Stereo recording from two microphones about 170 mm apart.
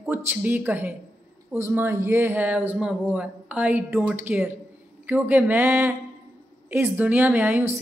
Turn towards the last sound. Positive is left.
turn(degrees=-10)  # may be behind; listen again after turning